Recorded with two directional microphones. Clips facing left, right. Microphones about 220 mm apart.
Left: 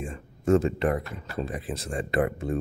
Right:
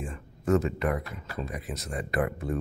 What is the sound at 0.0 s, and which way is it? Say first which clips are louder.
Speech: left 3 dB; 25° left (ahead or behind).